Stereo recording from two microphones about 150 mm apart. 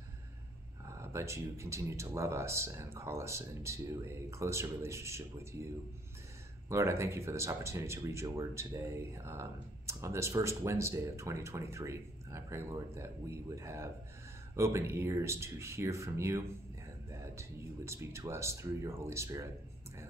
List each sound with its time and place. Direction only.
1.0 s speech: 20° right (ahead or behind)
6.7 s speech: 20° right (ahead or behind)